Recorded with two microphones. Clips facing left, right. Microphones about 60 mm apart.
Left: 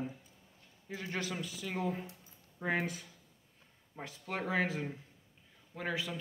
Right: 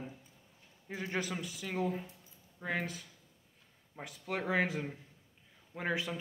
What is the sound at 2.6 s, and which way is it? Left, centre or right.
Speech, centre.